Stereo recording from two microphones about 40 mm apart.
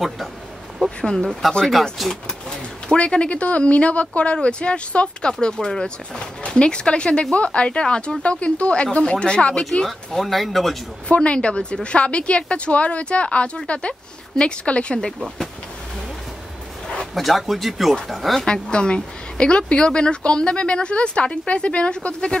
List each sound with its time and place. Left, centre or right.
1.2 s speech: centre
3.0 s speech: left
9.8 s speech: centre
11.1 s speech: left
17.0 s speech: centre
18.5 s speech: left